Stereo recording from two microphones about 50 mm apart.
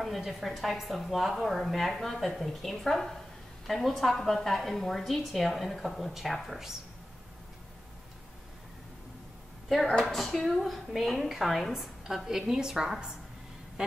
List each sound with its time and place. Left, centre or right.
0.0 s a woman's voice: centre
10.0 s a woman's voice: centre
13.8 s quack: centre